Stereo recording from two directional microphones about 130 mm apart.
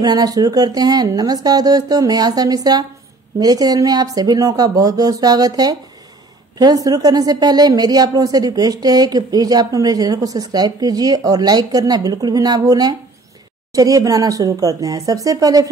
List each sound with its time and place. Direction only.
0.0 s a woman's voice: 30° right (ahead or behind)